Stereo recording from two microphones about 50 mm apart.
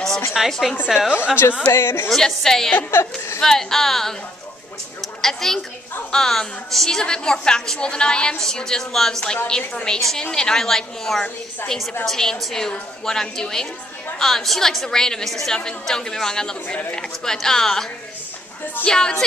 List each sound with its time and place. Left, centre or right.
0.5 s a woman's voice: centre
1.7 s a woman's voice: left
2.0 s a woman's voice: centre
2.9 s a woman's voice: left
3.3 s a woman's voice: centre
5.0 s a sound: centre
6.1 s a woman's voice: centre
9.9 s a woman's voice: centre
18.9 s a woman's voice: centre